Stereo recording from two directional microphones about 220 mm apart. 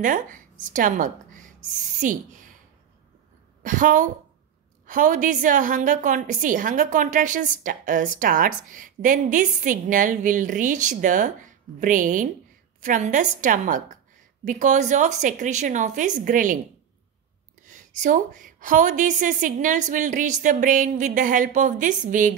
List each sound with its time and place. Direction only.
0.0 s a woman's voice: 35° right (ahead or behind)
3.6 s a woman's voice: 35° right (ahead or behind)
17.6 s a woman's voice: 35° right (ahead or behind)